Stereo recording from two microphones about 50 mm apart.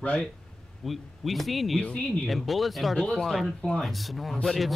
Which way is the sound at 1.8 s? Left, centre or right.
Centre.